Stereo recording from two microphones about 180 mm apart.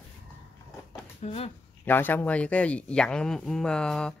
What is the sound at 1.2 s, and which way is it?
Speech, 35° left (ahead or behind).